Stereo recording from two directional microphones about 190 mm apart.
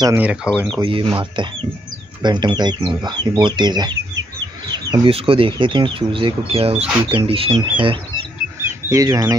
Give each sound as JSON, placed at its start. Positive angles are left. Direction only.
{"t": 0.0, "sound": "speech", "side_deg": -10}
{"t": 0.7, "sound": "speech", "side_deg": -25}
{"t": 4.9, "sound": "speech", "side_deg": -30}
{"t": 8.5, "sound": "bird", "side_deg": -15}